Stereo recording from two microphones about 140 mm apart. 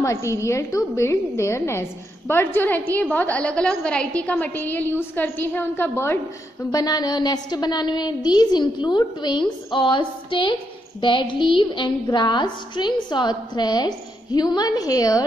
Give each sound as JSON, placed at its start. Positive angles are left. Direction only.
{"t": 0.0, "sound": "a woman's voice", "side_deg": 20}
{"t": 6.7, "sound": "a woman's voice", "side_deg": 25}